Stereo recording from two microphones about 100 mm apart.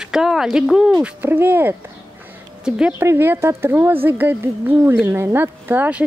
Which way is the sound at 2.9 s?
25° right (ahead or behind).